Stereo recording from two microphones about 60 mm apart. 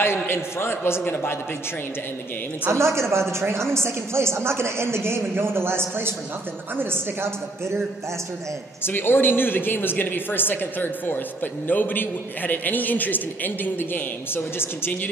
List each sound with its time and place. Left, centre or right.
0.0 s a man's voice: left
2.7 s a woman's voice: right
8.8 s a woman's voice: left